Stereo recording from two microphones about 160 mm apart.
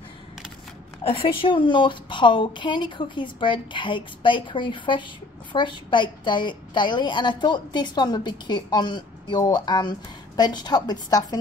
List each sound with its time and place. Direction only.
1.0 s a woman's voice: 35° left (ahead or behind)